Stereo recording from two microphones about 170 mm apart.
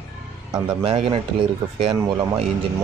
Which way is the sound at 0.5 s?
30° right (ahead or behind).